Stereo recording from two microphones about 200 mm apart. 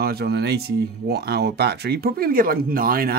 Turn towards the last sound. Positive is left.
turn(degrees=-45)  # may be behind; listen again after turning